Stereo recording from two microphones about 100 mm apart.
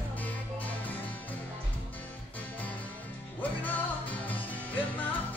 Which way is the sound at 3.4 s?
15° left (ahead or behind).